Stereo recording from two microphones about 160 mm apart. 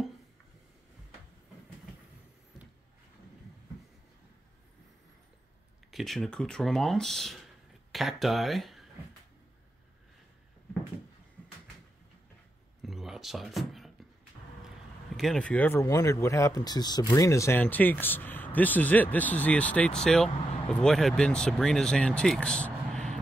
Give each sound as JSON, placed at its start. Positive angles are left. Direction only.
{"t": 5.9, "sound": "speech", "side_deg": 0}
{"t": 12.8, "sound": "a sound", "side_deg": 0}
{"t": 15.1, "sound": "speech", "side_deg": 5}